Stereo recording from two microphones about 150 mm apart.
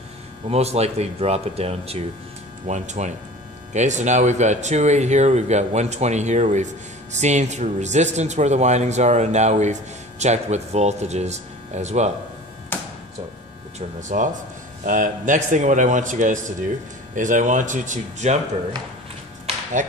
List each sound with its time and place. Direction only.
0.5 s speech: 45° right (ahead or behind)
13.7 s a man's voice: 55° right (ahead or behind)
19.8 s a man's voice: 55° right (ahead or behind)